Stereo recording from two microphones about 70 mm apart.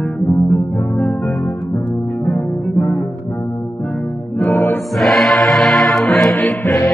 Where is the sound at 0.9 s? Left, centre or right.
Left.